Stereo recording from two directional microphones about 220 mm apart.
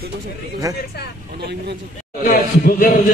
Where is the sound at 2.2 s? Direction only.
40° left (ahead or behind).